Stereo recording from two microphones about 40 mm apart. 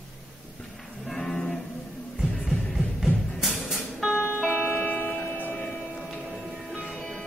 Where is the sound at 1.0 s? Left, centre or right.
Centre.